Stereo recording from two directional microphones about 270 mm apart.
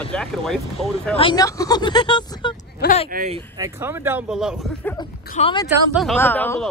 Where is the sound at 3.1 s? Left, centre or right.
Right.